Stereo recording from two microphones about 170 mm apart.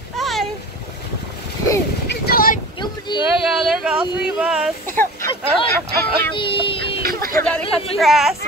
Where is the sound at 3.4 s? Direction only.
5° right (ahead or behind).